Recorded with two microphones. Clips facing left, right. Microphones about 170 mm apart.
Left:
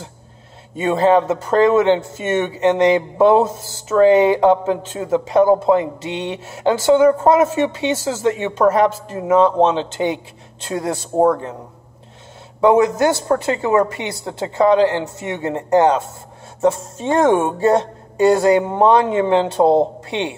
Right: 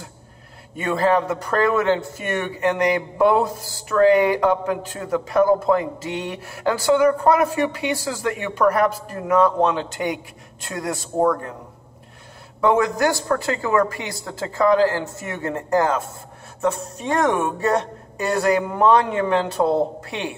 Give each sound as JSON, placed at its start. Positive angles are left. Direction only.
{"t": 0.7, "sound": "a man's voice", "side_deg": 25}
{"t": 12.5, "sound": "a man's voice", "side_deg": 20}